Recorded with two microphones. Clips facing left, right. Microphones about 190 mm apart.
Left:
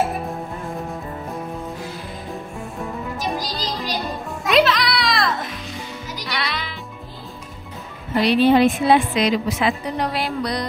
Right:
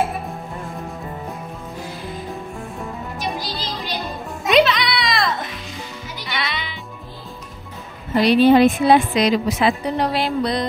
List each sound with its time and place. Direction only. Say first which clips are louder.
3.2 s music: even; 40° left (ahead or behind)
4.5 s music: right 1 dB; centre (ahead or behind)
8.3 s a woman's voice: right 2 dB; 40° right (ahead or behind); by 10.7 s 25° right (ahead or behind)